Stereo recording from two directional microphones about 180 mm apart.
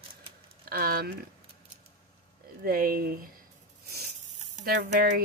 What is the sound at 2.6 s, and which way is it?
Speech, 55° right (ahead or behind).